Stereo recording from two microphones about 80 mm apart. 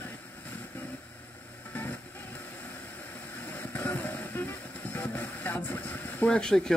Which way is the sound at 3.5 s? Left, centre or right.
Left.